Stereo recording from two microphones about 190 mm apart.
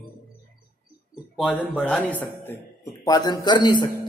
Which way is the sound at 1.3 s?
5° left (ahead or behind).